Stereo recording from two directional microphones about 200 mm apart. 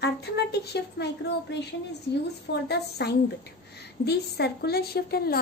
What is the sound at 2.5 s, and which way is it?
A woman's voice, 60° left (ahead or behind).